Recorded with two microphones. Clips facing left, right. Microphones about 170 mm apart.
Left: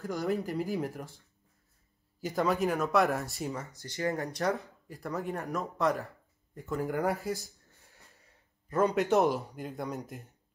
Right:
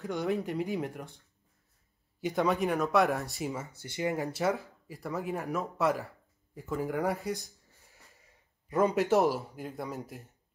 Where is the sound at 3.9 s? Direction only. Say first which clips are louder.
Even; 15° right (ahead or behind).